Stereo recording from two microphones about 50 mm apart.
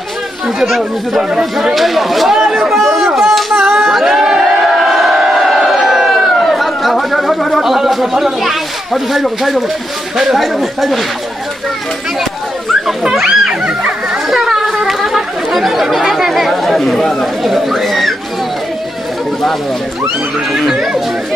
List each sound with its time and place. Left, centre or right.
0.6 s speech: centre
2.3 s chatter: centre
3.2 s a sound: centre
7.6 s speech: centre
13.1 s speech: centre
13.5 s speech: centre
14.3 s speech: centre
20.5 s speech: centre